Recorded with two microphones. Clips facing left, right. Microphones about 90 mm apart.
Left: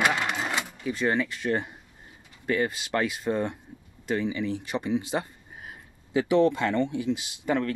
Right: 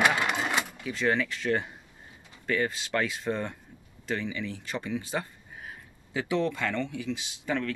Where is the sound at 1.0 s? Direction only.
20° left (ahead or behind).